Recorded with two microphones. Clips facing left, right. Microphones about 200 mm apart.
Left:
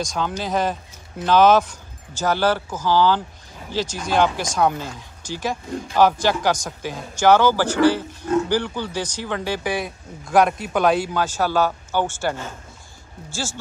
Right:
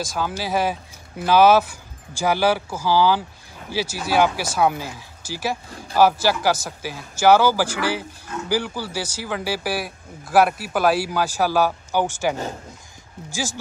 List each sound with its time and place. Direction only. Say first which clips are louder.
0.0 s speech: left 1 dB; 5° right (ahead or behind)